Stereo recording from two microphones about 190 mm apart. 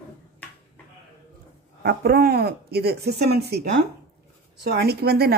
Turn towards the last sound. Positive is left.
turn(degrees=-55)  # may be behind; listen again after turning